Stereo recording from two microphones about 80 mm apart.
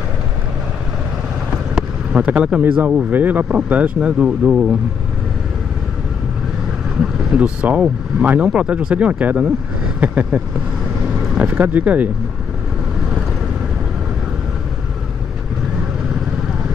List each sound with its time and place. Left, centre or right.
1.8 s vehicle: centre
2.8 s speech: right
7.0 s speech: centre